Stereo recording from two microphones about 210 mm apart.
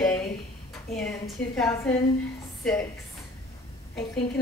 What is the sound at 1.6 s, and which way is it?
Speech, 10° left (ahead or behind).